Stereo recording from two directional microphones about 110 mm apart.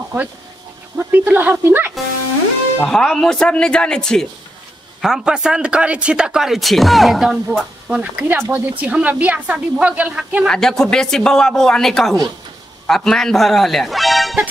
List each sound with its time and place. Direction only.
0.9 s speech: 15° right (ahead or behind)
2.8 s speech: 5° left (ahead or behind)
5.0 s speech: 5° right (ahead or behind)
10.4 s a man's voice: 5° left (ahead or behind)